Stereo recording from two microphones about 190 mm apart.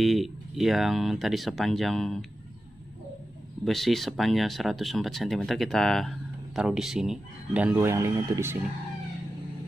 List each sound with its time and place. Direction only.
0.0 s speech: centre (ahead or behind)
3.6 s speech: centre (ahead or behind)